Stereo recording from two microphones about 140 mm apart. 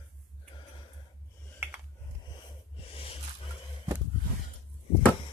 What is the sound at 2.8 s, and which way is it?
Roaring cats, 40° left (ahead or behind).